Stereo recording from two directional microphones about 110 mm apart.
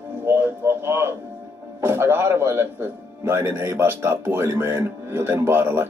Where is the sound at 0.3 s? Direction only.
25° right (ahead or behind).